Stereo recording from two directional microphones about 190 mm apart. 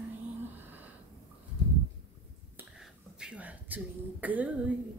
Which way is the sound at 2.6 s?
5° right (ahead or behind).